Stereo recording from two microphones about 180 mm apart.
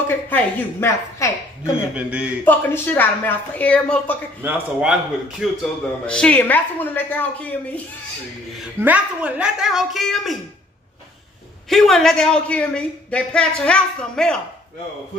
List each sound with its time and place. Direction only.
0.1 s a woman's voice: 10° left (ahead or behind)
1.7 s a man's voice: 5° right (ahead or behind)
2.4 s a woman's voice: 10° left (ahead or behind)
4.4 s a man's voice: 10° right (ahead or behind)
5.4 s a woman's voice: centre (ahead or behind)
8.5 s speech: 5° right (ahead or behind)
11.7 s speech: centre (ahead or behind)